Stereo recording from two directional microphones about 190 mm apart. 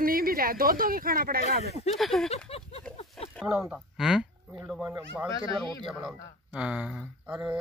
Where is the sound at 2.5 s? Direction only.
30° left (ahead or behind).